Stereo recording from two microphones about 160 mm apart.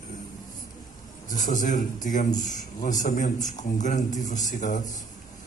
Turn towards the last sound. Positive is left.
turn(degrees=50)  # may be behind; listen again after turning